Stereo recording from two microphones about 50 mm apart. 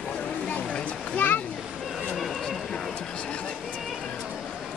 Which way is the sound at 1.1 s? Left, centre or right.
Left.